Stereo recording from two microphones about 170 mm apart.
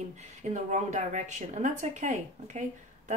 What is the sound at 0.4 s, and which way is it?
A woman's voice, 45° right (ahead or behind).